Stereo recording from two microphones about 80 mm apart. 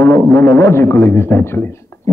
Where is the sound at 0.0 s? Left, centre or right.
Left.